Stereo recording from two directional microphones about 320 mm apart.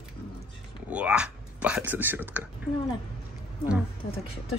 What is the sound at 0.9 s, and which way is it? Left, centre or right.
Speech, centre.